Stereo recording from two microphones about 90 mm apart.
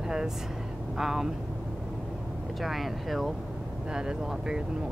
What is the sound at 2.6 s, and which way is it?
Speech, centre (ahead or behind).